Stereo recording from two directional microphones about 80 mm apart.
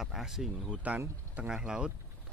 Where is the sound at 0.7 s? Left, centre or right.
Centre.